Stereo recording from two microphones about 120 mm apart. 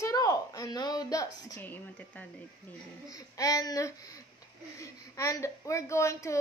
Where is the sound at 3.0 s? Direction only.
30° left (ahead or behind).